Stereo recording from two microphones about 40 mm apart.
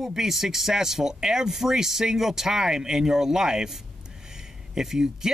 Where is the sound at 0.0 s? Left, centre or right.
Centre.